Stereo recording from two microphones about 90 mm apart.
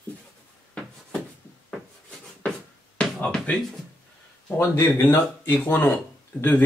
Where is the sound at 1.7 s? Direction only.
10° left (ahead or behind).